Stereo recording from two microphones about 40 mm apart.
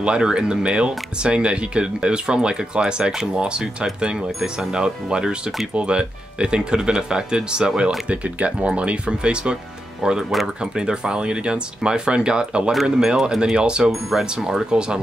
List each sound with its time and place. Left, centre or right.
0.0 s speech: right
8.1 s speech: right
13.0 s speech: centre
13.6 s speech: right